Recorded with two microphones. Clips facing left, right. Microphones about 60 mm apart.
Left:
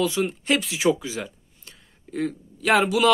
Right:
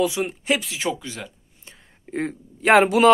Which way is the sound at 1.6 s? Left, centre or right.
Right.